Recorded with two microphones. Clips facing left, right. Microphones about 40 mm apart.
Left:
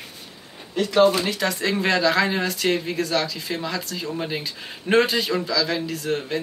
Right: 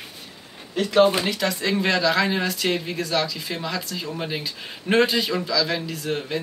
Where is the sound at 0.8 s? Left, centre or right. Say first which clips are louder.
Even; centre.